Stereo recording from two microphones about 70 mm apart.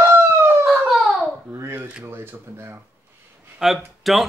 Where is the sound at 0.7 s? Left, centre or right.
Centre.